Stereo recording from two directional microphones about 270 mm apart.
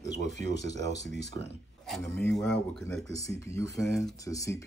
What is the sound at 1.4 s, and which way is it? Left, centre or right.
Speech, centre.